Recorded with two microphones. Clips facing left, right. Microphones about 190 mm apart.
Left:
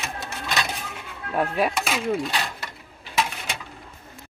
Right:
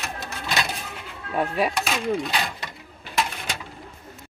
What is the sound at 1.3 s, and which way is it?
Cutlery, centre (ahead or behind).